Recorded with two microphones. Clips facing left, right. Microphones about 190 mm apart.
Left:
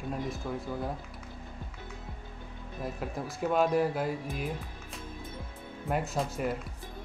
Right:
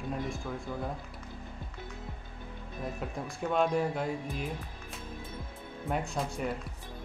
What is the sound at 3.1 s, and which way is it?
Speech, 5° left (ahead or behind).